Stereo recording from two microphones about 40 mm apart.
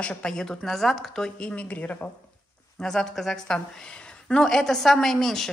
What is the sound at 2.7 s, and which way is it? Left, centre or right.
A woman's voice, centre.